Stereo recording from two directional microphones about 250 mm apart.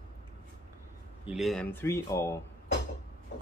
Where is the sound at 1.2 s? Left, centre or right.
Centre.